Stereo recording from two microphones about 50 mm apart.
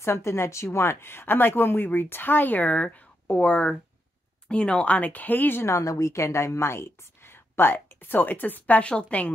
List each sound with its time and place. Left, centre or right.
0.0 s speech: left
4.9 s speech: left
5.7 s speech: left